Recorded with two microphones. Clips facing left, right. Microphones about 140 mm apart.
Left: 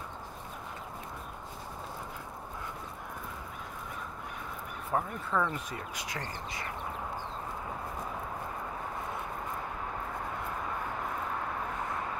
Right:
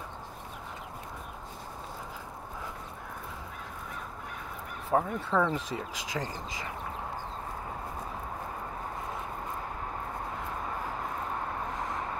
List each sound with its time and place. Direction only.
4.9 s speech: 90° right